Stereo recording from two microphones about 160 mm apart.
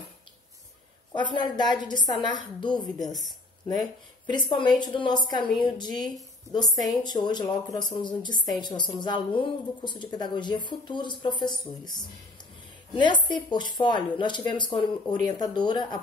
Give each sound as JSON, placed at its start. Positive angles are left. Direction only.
{"t": 1.1, "sound": "speech", "side_deg": 30}
{"t": 4.3, "sound": "speech", "side_deg": 30}